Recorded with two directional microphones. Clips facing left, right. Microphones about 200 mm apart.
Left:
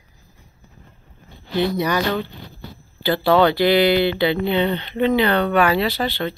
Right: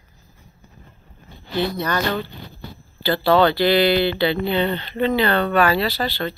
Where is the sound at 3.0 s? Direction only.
15° left (ahead or behind).